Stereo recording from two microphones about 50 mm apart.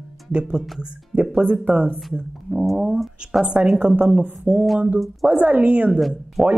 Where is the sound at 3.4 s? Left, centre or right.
Right.